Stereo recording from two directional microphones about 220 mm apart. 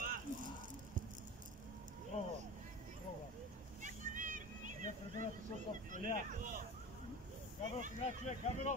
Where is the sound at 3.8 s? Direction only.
35° right (ahead or behind).